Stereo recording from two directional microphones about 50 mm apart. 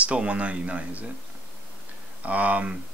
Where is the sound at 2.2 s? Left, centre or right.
Right.